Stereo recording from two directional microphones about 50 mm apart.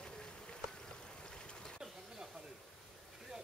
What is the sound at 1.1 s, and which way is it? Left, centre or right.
Boat, centre.